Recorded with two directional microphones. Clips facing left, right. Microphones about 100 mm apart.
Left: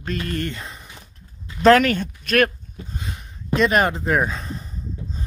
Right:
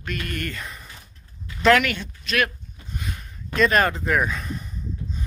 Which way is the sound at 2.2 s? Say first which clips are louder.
Left 5 dB; 50° left (ahead or behind).